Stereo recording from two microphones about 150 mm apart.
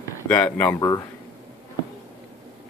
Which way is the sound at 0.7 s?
25° left (ahead or behind).